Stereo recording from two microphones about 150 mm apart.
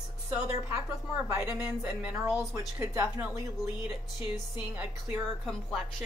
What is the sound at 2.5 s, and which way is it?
Speech, 20° right (ahead or behind).